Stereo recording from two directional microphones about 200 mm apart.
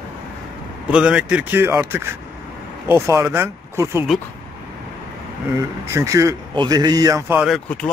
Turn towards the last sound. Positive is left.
turn(degrees=5)  # may be behind; listen again after turning